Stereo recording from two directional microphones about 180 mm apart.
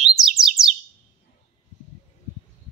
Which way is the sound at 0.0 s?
Centre (ahead or behind).